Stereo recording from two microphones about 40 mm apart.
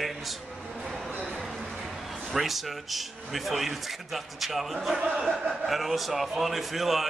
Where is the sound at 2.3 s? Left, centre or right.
Centre.